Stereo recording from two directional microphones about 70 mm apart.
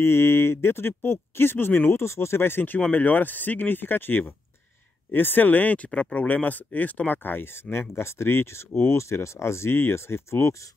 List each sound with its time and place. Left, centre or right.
0.0 s speech: left
2.0 s speech: left